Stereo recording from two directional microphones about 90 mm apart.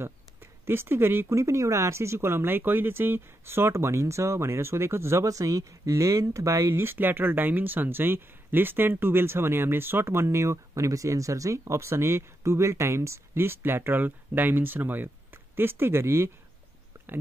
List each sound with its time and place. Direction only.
0.0 s speech: 25° right (ahead or behind)